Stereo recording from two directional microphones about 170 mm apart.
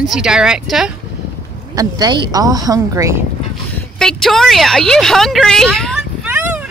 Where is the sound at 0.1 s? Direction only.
5° right (ahead or behind).